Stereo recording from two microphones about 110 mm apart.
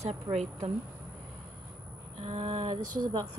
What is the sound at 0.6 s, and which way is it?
Speech, 80° right.